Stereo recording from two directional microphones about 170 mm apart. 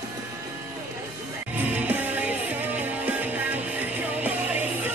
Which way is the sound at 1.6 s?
10° right (ahead or behind).